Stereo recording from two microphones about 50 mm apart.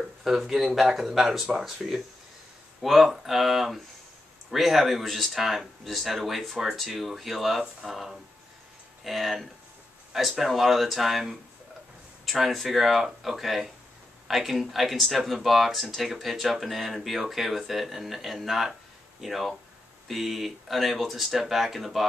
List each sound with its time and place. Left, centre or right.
0.2 s speech: centre